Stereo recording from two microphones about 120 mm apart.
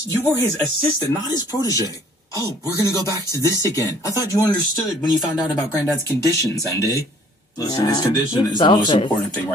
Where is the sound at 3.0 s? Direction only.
30° right (ahead or behind).